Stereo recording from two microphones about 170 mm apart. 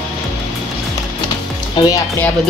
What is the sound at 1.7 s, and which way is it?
Speech, 20° left (ahead or behind).